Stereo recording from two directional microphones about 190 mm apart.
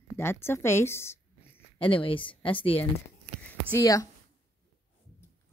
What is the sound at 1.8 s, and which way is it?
Speech, 30° left (ahead or behind).